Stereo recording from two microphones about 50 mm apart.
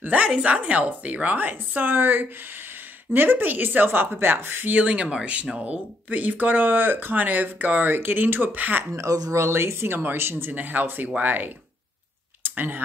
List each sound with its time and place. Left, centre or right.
0.0 s a woman's voice: right
4.7 s speech: right
8.9 s speech: right
10.5 s speech: right